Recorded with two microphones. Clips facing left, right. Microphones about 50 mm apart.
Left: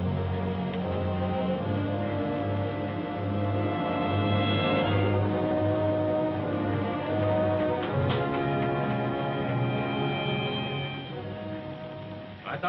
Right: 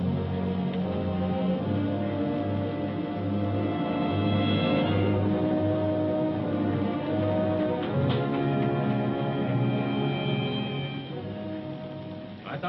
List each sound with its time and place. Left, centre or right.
0.0 s music: centre
0.8 s music: centre
1.3 s music: centre